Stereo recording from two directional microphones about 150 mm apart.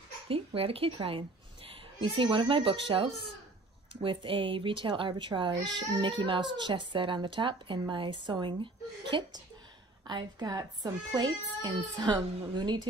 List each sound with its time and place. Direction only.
0.3 s speech: 40° right (ahead or behind)